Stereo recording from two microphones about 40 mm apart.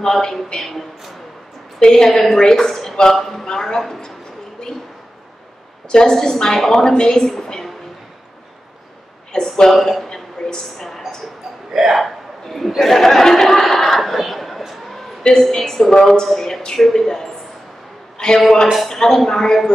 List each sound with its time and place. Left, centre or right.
0.1 s a woman's voice: centre
3.4 s a woman's voice: centre
5.9 s a woman's voice: centre
9.3 s a woman's voice: centre
9.8 s speech: centre
10.0 s a sound: centre
11.7 s speech: centre
12.0 s hiccup: centre
12.8 s speech: centre
13.9 s a sound: centre
15.2 s a woman's voice: centre
18.1 s a sound: centre
18.9 s a woman's voice: centre